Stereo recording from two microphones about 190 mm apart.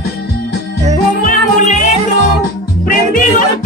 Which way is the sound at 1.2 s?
40° left (ahead or behind).